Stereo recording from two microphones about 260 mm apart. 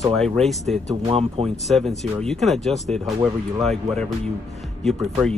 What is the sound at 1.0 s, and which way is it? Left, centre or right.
Speech, right.